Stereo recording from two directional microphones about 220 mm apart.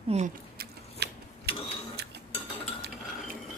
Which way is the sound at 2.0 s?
50° right (ahead or behind).